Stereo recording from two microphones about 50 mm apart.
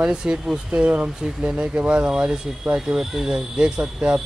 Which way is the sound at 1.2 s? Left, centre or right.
Centre.